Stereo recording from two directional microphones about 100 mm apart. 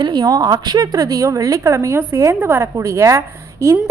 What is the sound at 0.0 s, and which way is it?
A woman's voice, 45° right (ahead or behind).